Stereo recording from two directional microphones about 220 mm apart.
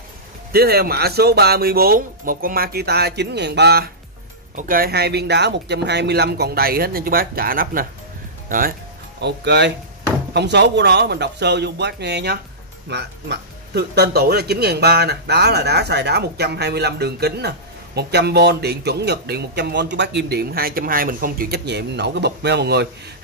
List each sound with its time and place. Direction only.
0.5 s a man's voice: 45° right (ahead or behind)
9.2 s a man's voice: 50° right (ahead or behind)